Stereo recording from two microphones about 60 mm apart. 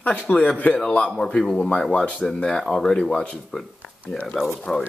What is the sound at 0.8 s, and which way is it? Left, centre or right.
Speech, centre.